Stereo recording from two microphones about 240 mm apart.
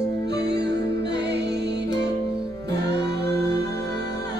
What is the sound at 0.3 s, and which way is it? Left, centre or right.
Music, right.